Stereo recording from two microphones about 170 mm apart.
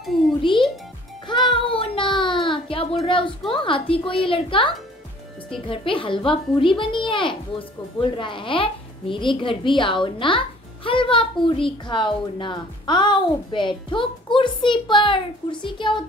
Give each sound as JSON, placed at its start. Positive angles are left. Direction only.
{"t": 0.5, "sound": "a child's voice", "side_deg": 30}
{"t": 1.2, "sound": "music", "side_deg": 25}
{"t": 2.4, "sound": "a sound", "side_deg": 30}
{"t": 3.1, "sound": "a woman's voice", "side_deg": 30}